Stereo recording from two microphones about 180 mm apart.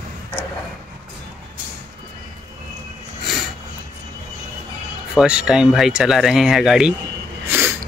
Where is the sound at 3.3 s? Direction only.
Centre (ahead or behind).